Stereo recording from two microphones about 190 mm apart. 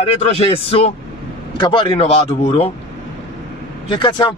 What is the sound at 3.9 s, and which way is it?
Speech, 25° left (ahead or behind).